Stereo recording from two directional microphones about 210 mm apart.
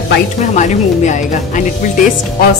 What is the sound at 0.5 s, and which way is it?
Speech, 35° left (ahead or behind).